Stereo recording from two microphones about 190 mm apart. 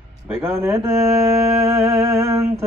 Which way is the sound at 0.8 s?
15° right (ahead or behind).